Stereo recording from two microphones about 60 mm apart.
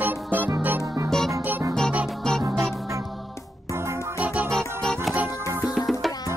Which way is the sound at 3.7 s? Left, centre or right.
Right.